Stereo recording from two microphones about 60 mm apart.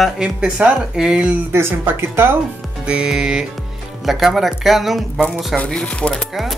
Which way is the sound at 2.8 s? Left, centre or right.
Centre.